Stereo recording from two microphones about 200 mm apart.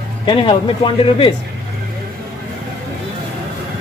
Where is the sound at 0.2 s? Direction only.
25° left (ahead or behind).